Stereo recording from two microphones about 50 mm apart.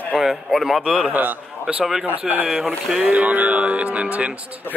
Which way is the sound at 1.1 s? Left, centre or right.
Right.